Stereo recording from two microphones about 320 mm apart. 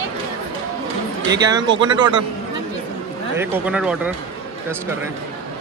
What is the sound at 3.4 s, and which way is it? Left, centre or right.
Speech, centre.